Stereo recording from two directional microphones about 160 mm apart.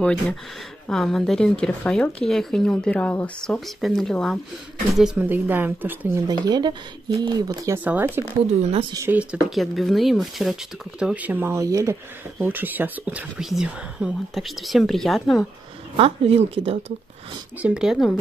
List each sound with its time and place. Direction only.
0.0 s speech: 5° left (ahead or behind); by 6.1 s 10° right (ahead or behind)
6.2 s speech: 25° right (ahead or behind); by 15.4 s centre (ahead or behind)
16.0 s speech: 35° right (ahead or behind)
17.6 s speech: 5° right (ahead or behind)